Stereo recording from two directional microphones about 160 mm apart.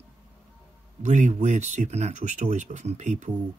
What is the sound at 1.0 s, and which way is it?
Speech, 45° right (ahead or behind).